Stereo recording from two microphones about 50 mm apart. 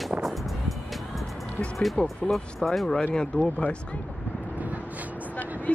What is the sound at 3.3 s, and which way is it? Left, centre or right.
Speech, left.